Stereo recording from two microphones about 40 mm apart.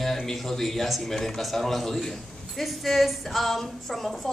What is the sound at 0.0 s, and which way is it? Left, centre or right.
A man's voice, centre.